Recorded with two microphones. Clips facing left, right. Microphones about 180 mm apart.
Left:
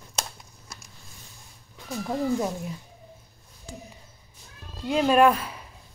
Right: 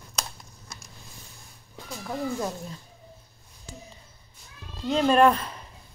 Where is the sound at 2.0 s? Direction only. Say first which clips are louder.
Left 4 dB; 15° left (ahead or behind).